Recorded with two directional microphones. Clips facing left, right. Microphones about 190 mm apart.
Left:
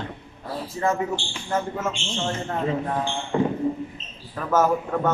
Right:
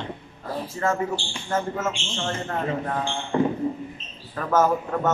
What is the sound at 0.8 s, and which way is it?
Speech, 15° left (ahead or behind).